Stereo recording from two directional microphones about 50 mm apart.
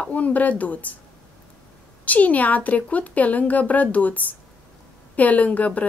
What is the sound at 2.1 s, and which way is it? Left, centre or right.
A woman's voice, left.